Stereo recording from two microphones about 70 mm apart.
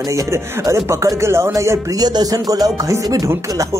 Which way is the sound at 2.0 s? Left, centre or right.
Right.